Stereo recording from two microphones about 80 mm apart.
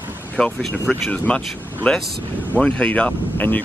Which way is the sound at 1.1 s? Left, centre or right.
Centre.